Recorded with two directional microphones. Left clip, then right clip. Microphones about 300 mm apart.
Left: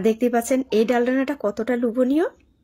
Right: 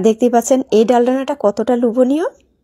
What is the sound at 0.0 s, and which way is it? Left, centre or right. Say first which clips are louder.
A woman's voice: right 7 dB; centre.